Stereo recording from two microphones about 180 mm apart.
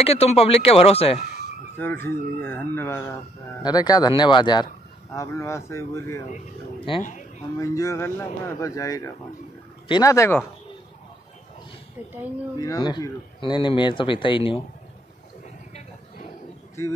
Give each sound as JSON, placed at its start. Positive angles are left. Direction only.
{"t": 0.0, "sound": "speech", "side_deg": 35}
{"t": 1.8, "sound": "speech", "side_deg": 10}
{"t": 7.5, "sound": "speech", "side_deg": 15}
{"t": 12.5, "sound": "speech", "side_deg": 20}